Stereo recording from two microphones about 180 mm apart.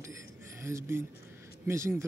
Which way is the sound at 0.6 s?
15° right (ahead or behind).